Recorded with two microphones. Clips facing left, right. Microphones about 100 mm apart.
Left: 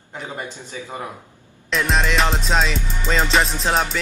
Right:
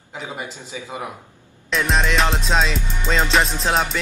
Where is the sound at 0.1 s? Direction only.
15° right (ahead or behind).